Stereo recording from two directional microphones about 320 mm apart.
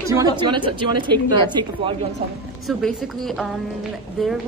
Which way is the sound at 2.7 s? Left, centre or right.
Centre.